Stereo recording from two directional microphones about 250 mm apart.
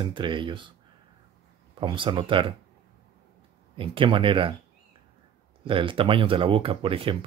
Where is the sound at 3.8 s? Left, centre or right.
Right.